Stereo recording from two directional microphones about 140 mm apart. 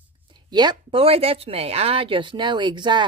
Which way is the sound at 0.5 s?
30° right (ahead or behind).